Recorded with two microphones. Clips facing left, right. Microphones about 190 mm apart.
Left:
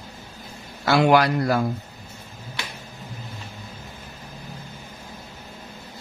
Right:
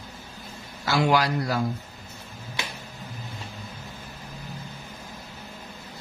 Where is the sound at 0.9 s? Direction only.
60° left (ahead or behind).